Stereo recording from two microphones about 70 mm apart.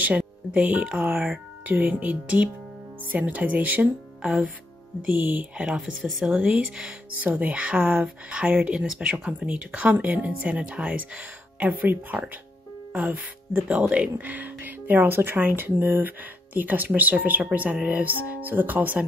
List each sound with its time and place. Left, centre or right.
0.0 s speech: right
4.2 s music: centre
5.0 s speech: right
5.6 s speech: centre; by 19.0 s right